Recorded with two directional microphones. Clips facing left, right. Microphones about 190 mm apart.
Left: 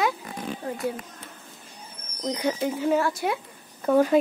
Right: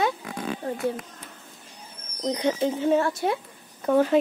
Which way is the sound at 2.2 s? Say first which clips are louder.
Right 2 dB; 25° right (ahead or behind).